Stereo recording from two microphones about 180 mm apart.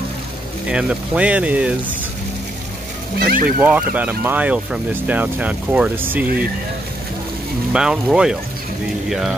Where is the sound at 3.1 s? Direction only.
55° right (ahead or behind).